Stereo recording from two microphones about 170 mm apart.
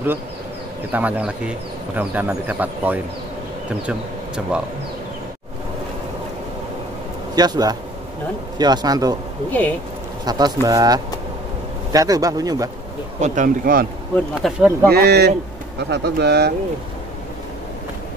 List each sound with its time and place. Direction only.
0.9 s speech: 5° right (ahead or behind)
7.3 s speech: 25° right (ahead or behind)
9.5 s speech: 10° left (ahead or behind)
10.2 s speech: 20° right (ahead or behind)
13.2 s a man's voice: 45° right (ahead or behind)
14.3 s speech: 5° right (ahead or behind)
14.9 s speech: 70° right (ahead or behind)